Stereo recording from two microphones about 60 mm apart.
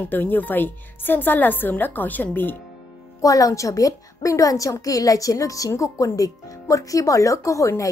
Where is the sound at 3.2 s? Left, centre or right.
Left.